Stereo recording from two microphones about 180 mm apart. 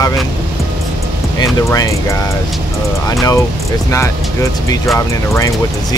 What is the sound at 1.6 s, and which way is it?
Speech, 15° left (ahead or behind).